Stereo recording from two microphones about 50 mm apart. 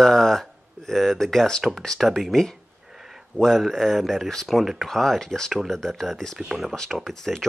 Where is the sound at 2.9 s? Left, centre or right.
Centre.